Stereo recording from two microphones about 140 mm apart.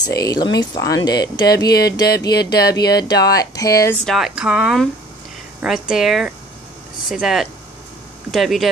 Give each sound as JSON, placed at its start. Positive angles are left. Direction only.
{"t": 0.0, "sound": "speech", "side_deg": 30}
{"t": 4.0, "sound": "speech", "side_deg": 0}